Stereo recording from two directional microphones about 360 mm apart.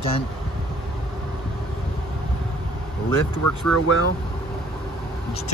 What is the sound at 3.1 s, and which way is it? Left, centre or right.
Speech, left.